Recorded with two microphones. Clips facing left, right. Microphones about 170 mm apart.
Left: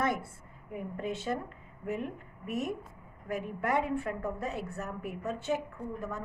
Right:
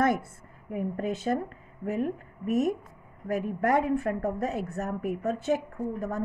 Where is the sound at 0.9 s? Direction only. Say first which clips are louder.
Right 4 dB; 40° right (ahead or behind).